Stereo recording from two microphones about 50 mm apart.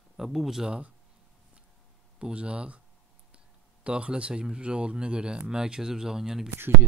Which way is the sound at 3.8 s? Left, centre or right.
Right.